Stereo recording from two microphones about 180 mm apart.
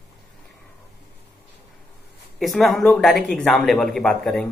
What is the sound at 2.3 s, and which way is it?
Speech, centre (ahead or behind).